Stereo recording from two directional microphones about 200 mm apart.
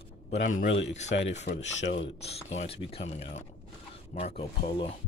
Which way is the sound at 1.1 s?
55° left (ahead or behind).